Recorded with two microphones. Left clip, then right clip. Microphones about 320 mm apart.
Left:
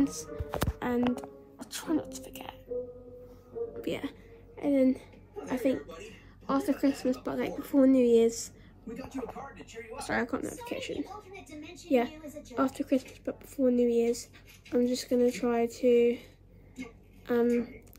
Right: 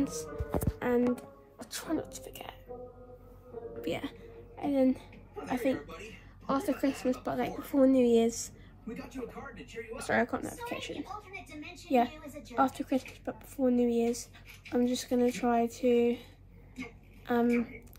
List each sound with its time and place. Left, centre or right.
0.0 s a woman's voice: centre
0.7 s a sound: centre
1.1 s speech: centre
3.8 s a woman's voice: centre
9.2 s speech: left
9.9 s a woman's voice: centre
17.3 s a woman's voice: centre